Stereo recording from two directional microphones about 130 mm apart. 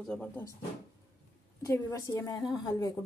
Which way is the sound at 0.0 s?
10° left (ahead or behind).